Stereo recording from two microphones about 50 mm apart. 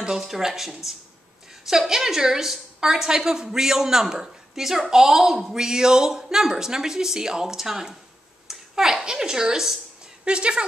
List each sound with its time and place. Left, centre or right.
0.0 s a woman's voice: centre